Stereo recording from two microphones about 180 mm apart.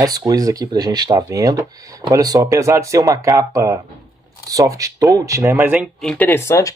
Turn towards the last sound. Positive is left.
turn(degrees=15)  # may be behind; listen again after turning